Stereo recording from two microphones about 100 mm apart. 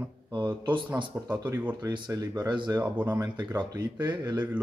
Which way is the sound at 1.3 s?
15° right (ahead or behind).